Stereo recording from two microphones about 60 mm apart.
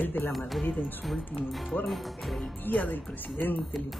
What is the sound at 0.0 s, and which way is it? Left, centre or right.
Speech, left.